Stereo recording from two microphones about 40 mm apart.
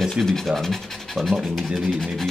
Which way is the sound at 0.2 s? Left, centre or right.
Centre.